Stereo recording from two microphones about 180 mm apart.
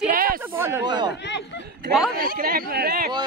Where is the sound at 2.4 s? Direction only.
55° right (ahead or behind).